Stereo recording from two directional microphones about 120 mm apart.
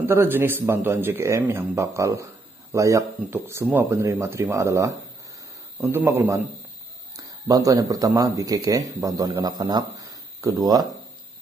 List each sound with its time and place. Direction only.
0.0 s speech: 20° right (ahead or behind)
7.4 s speech: 30° right (ahead or behind)